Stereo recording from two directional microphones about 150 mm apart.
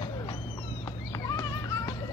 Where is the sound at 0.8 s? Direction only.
20° left (ahead or behind).